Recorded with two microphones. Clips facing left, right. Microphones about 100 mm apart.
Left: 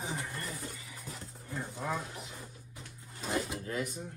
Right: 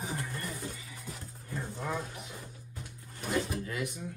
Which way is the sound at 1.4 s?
10° left (ahead or behind).